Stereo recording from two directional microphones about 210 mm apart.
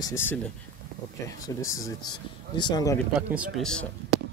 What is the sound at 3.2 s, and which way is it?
Speech, 5° right (ahead or behind).